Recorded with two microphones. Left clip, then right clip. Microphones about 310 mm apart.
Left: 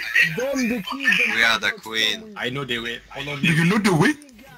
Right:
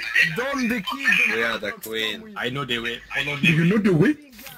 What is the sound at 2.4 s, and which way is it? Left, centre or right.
Speech, centre.